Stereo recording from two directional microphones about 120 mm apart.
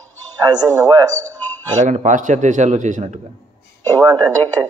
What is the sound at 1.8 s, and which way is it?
A man's voice, 90° right.